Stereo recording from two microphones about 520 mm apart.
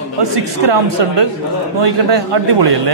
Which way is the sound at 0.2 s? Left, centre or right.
Right.